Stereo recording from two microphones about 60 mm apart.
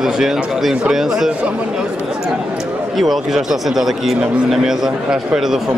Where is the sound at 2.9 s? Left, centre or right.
Centre.